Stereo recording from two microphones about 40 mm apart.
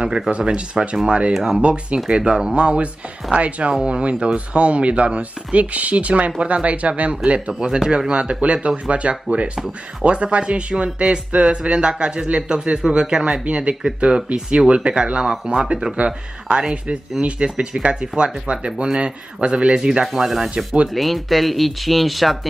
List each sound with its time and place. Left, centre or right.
0.4 s speech: centre
1.6 s speech: right
17.2 s speech: right
20.2 s speech: centre
20.5 s speech: right
20.9 s speech: centre